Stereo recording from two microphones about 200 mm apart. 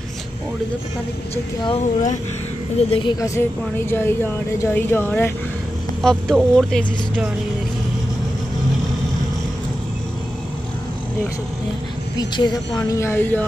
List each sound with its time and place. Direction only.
1.3 s a woman's voice: 30° left (ahead or behind); by 7.2 s 5° left (ahead or behind)
12.2 s a woman's voice: 20° left (ahead or behind)